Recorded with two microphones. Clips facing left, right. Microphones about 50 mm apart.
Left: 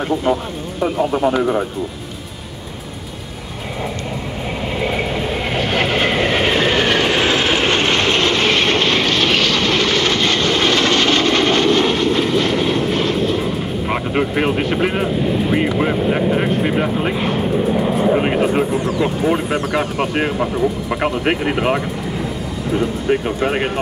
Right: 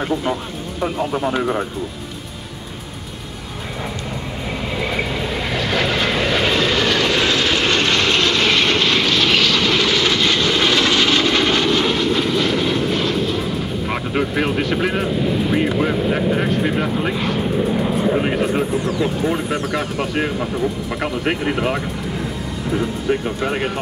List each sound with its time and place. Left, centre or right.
0.0 s speech: centre
4.7 s vehicle: left
14.9 s speech: centre
17.4 s speech: centre
23.0 s speech: centre